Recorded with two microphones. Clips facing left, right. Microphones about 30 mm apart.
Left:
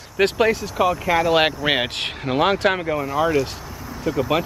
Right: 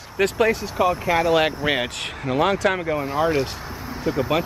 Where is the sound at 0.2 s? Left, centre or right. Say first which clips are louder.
Left 2 dB; left.